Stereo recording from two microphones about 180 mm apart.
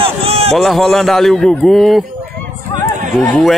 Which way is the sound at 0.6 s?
Centre (ahead or behind).